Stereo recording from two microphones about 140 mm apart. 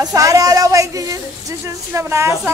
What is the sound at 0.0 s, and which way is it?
A woman's voice, 25° right (ahead or behind).